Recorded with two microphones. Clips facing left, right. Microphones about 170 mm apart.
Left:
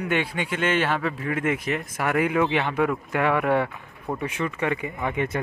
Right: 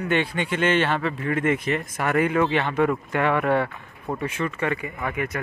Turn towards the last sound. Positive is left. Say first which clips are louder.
# left 2 dB
turn(degrees=25)  # may be behind; listen again after turning